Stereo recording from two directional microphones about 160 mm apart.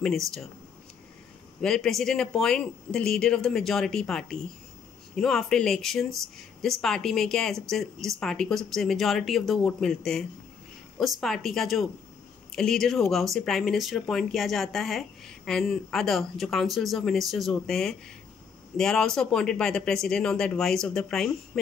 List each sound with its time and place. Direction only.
0.0 s speech: centre (ahead or behind)
1.6 s speech: 5° left (ahead or behind)